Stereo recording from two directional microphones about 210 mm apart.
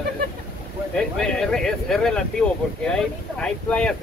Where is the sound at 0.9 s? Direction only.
5° left (ahead or behind).